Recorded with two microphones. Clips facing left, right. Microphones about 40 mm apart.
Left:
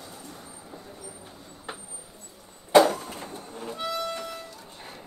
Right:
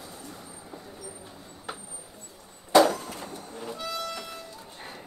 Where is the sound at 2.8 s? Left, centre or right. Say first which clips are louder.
Even; left.